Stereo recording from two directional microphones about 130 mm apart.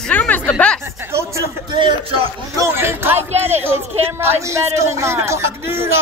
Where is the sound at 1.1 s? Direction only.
20° right (ahead or behind).